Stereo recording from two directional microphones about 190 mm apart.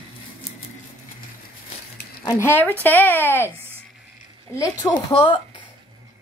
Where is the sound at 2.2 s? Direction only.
20° left (ahead or behind).